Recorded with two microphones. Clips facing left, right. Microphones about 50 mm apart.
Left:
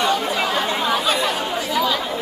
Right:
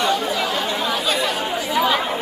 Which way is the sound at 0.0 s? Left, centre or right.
Centre.